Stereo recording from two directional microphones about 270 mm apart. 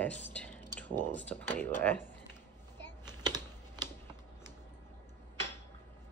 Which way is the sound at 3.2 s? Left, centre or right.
Centre.